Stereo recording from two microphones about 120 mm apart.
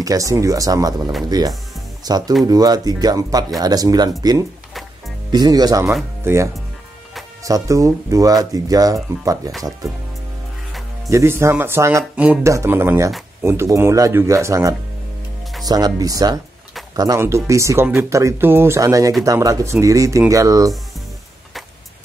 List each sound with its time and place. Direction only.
0.0 s speech: 30° right (ahead or behind)
11.1 s speech: 25° right (ahead or behind)